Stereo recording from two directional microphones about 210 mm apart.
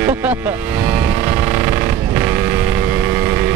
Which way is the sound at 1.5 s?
10° right (ahead or behind).